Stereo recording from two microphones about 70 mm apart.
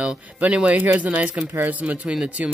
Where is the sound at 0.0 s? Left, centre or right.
Centre.